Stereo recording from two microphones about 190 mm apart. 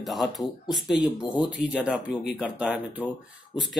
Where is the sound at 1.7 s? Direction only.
5° right (ahead or behind).